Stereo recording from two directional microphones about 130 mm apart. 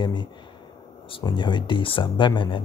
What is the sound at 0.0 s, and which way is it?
Speech, 35° left (ahead or behind).